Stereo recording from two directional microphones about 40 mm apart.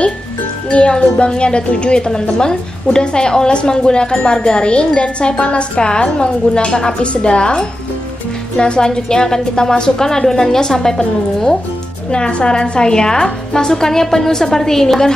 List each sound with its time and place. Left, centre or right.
0.7 s a woman's voice: left
12.1 s a woman's voice: left